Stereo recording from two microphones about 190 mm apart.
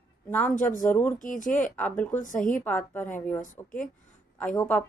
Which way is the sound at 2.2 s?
45° left (ahead or behind).